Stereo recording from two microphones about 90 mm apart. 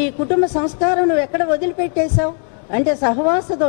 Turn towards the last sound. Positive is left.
turn(degrees=15)  # may be behind; listen again after turning